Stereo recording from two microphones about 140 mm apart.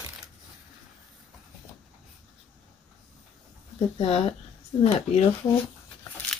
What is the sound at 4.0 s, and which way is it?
Speech, 45° left (ahead or behind).